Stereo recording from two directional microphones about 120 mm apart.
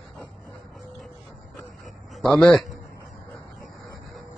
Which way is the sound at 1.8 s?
Centre (ahead or behind).